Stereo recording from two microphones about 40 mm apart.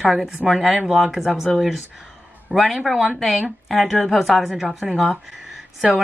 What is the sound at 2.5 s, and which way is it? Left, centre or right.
A woman's voice, centre.